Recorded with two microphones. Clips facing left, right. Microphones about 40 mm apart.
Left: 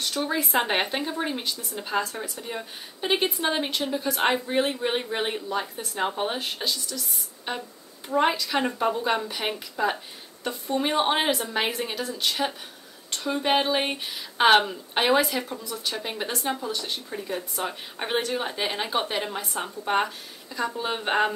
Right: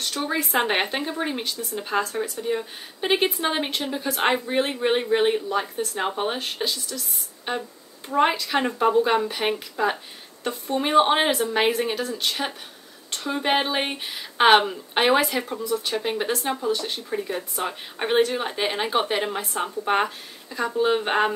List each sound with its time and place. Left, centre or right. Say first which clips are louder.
0.2 s speech: right 2 dB; centre
12.3 s speech: left 1 dB; centre